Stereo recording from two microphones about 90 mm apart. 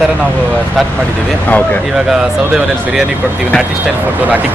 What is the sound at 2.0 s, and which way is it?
Speech, 5° right (ahead or behind).